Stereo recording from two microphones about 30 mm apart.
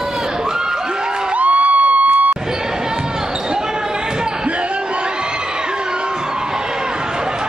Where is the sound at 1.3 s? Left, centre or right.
Right.